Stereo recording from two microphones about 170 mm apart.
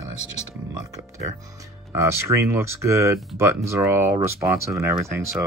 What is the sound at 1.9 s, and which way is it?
Speech, 15° right (ahead or behind).